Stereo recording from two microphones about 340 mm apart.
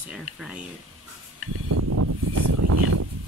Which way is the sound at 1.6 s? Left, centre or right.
Right.